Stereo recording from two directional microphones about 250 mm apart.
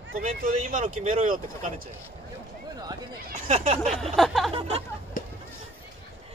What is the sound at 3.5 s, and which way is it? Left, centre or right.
Speech, right.